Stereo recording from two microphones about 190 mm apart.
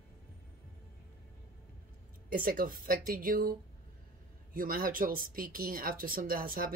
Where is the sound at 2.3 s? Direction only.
50° right (ahead or behind).